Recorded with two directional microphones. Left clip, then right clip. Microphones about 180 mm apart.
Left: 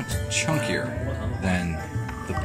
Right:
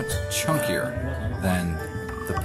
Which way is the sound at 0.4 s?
15° right (ahead or behind).